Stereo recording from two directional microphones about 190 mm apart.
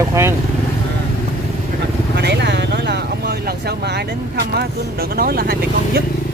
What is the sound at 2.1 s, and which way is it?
Speech, 60° right (ahead or behind).